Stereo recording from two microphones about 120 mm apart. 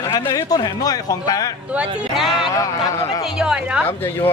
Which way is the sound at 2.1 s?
Centre (ahead or behind).